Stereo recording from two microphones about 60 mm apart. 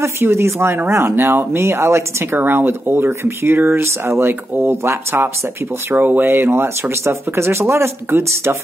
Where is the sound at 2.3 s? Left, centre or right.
Right.